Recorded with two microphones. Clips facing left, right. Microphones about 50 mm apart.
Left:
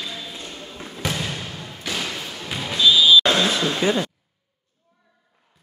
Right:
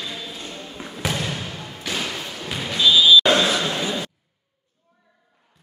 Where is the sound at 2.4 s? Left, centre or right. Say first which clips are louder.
Even; centre.